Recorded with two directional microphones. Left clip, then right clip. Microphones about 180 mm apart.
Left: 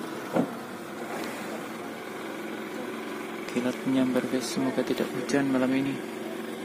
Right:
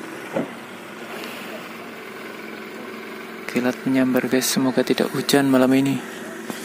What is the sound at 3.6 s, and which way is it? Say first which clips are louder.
Speech: right 7 dB; 30° right (ahead or behind).